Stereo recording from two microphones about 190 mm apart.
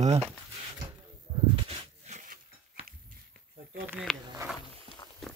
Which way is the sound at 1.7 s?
40° right (ahead or behind).